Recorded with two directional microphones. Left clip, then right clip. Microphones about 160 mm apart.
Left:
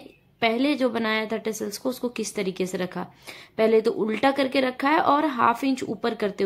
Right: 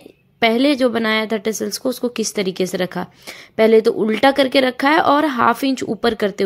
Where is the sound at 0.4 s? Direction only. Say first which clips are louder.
Right 8 dB; 35° right (ahead or behind).